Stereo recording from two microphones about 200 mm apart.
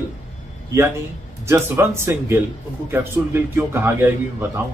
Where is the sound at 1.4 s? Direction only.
15° right (ahead or behind).